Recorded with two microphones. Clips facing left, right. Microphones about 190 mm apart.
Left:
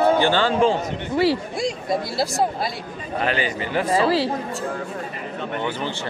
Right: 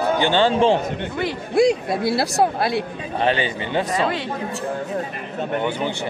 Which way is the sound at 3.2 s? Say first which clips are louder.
Right 3 dB; 25° right (ahead or behind).